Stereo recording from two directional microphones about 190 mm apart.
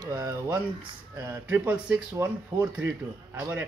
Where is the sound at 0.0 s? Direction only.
20° right (ahead or behind).